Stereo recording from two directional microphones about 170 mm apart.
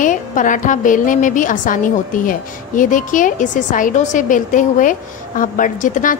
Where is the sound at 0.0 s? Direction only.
50° left (ahead or behind).